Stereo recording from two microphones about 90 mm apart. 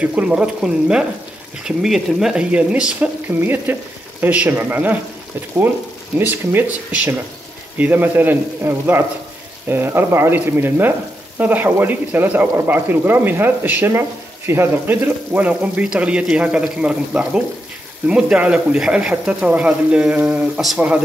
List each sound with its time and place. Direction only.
0.0 s speech: 15° right (ahead or behind)
3.3 s speech: 25° right (ahead or behind)
6.1 s speech: 25° right (ahead or behind); by 21.0 s 10° right (ahead or behind)